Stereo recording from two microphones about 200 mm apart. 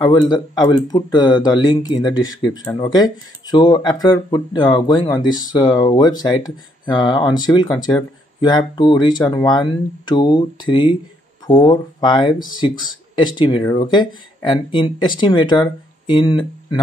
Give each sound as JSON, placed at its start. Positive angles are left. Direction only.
{"t": 0.0, "sound": "speech", "side_deg": 20}